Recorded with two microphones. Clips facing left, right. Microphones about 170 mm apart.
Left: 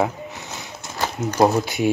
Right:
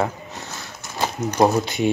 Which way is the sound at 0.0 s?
20° left (ahead or behind).